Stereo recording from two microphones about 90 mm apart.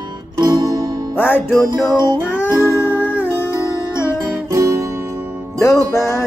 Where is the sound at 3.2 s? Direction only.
25° left (ahead or behind).